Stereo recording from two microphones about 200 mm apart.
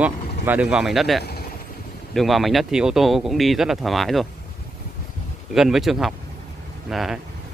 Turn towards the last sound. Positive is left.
turn(degrees=0)  # may be behind; listen again after turning